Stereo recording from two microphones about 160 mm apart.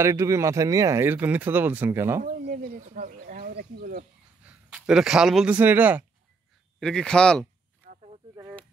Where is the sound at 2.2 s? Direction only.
60° right (ahead or behind).